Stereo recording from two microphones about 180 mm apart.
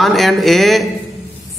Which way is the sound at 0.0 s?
Centre (ahead or behind).